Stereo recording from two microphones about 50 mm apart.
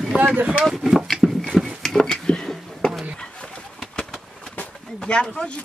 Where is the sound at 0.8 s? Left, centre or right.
Centre.